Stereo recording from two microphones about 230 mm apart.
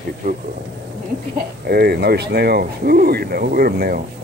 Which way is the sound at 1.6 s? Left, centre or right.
Right.